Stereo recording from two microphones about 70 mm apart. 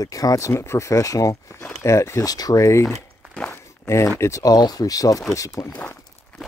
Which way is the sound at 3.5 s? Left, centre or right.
Left.